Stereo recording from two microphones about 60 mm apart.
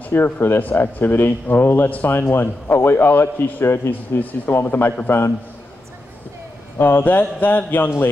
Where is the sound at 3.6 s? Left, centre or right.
Left.